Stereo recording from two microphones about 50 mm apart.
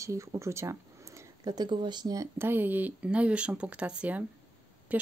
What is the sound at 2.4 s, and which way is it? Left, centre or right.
Speech, right.